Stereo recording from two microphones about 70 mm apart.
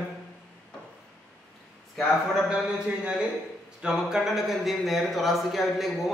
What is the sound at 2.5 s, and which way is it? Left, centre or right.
A man's voice, centre.